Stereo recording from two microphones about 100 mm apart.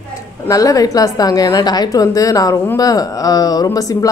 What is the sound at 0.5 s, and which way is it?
Speech, 35° left (ahead or behind).